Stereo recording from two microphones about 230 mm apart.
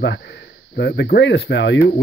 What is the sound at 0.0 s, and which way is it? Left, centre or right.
Speech, left.